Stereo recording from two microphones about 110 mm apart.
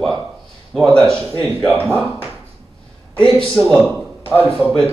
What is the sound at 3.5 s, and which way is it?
A man's voice, centre (ahead or behind).